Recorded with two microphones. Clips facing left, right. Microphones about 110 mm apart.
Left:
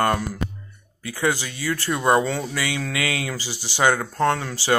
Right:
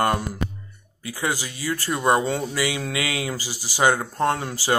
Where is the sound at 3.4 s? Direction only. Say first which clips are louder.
Left 1 dB; 40° right (ahead or behind).